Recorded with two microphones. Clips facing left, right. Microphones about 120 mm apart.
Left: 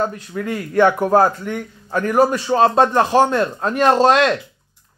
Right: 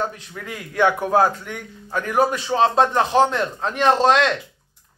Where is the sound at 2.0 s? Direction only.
Centre (ahead or behind).